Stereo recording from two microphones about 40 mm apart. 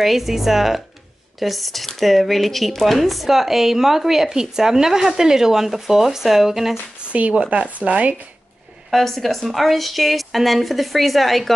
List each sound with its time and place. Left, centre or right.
0.0 s speech: centre
7.1 s speech: right
8.9 s speech: centre